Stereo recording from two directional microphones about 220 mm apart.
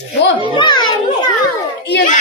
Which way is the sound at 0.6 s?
20° left (ahead or behind).